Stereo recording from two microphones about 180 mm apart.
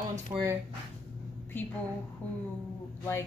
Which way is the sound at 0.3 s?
15° right (ahead or behind).